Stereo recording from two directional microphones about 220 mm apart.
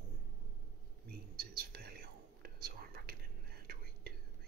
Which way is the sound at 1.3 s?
45° right (ahead or behind).